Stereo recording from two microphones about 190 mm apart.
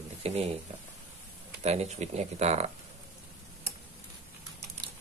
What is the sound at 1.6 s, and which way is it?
A man's voice, 35° right (ahead or behind).